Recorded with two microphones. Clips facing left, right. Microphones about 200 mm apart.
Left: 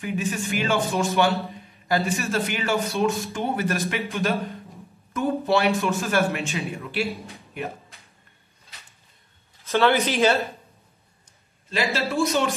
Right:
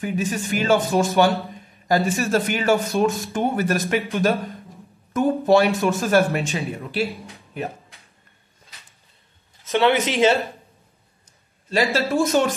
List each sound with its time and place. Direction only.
0.0 s a man's voice: 40° right (ahead or behind)
9.7 s speech: 20° right (ahead or behind)
12.1 s a man's voice: 50° right (ahead or behind)